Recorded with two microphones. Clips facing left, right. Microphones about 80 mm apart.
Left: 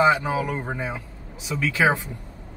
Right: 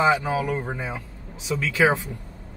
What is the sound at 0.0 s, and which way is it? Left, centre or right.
Speech, centre.